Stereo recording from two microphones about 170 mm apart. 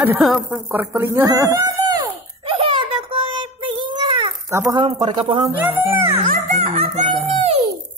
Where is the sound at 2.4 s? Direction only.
30° right (ahead or behind).